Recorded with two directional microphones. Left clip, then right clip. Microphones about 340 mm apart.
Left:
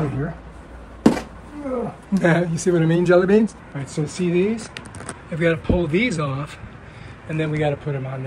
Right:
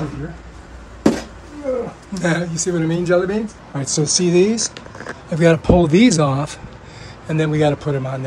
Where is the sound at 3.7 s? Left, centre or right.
Centre.